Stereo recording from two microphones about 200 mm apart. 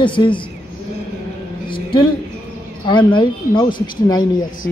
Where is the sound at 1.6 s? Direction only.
25° left (ahead or behind).